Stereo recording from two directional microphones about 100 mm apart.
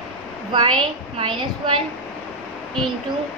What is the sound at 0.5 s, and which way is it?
A woman's voice, 50° right (ahead or behind).